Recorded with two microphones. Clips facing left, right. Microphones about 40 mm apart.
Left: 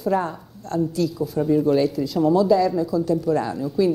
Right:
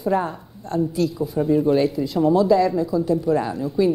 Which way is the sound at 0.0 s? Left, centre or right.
Centre.